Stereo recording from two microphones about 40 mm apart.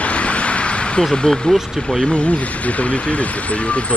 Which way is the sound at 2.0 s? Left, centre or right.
Left.